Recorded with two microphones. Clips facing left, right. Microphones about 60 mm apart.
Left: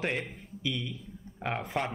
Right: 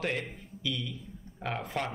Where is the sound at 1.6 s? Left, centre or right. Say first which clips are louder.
Left 2 dB; centre.